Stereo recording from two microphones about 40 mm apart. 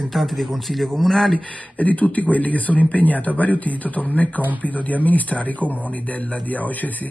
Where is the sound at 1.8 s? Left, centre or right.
Left.